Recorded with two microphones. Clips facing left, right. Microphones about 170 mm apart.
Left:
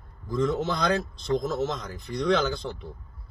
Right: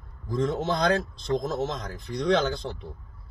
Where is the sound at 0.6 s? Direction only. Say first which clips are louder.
Right 2 dB; 30° right (ahead or behind).